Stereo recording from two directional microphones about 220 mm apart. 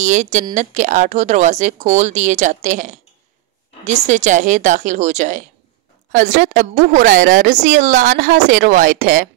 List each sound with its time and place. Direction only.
0.0 s speech: 35° right (ahead or behind)